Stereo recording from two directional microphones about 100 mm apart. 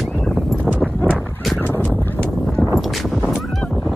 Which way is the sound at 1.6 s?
20° left (ahead or behind).